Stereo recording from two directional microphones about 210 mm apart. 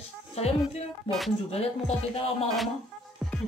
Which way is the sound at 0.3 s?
30° left (ahead or behind).